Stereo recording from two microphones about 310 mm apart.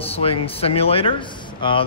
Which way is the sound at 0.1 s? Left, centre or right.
Centre.